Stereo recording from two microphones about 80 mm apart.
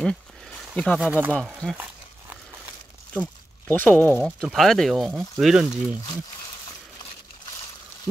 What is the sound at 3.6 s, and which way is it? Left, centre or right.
Speech, left.